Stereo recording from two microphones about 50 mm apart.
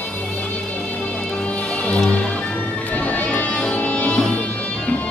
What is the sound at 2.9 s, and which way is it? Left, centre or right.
Music, left.